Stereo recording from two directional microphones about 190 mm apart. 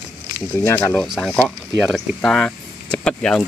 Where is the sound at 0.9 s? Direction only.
Centre (ahead or behind).